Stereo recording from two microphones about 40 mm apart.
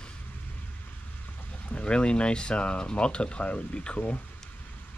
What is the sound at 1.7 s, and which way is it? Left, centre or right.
Speech, left.